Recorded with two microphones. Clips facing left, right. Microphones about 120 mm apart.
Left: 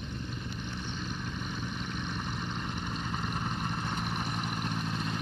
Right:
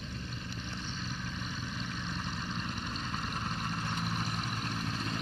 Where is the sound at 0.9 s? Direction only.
15° left (ahead or behind).